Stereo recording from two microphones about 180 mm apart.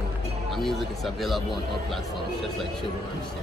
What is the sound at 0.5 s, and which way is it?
Speech, centre (ahead or behind).